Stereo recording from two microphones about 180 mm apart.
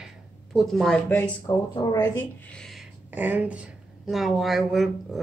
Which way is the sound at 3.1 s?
10° right (ahead or behind).